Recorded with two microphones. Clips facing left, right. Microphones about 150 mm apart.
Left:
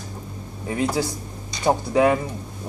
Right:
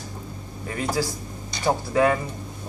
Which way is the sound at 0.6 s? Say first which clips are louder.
Left 3 dB; 20° left (ahead or behind).